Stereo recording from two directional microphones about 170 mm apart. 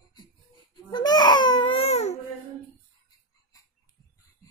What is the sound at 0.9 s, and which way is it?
Baby cry, 25° left (ahead or behind).